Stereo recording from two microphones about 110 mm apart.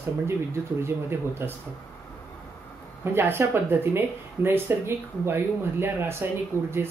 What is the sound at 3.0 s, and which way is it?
Speech, 20° right (ahead or behind).